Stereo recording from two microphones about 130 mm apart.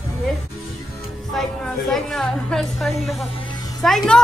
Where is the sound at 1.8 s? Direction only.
5° left (ahead or behind).